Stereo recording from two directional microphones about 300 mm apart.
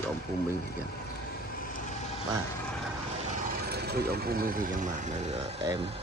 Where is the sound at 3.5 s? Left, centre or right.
Right.